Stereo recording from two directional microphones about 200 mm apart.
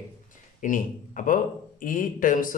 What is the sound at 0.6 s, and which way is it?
Speech, 40° left (ahead or behind).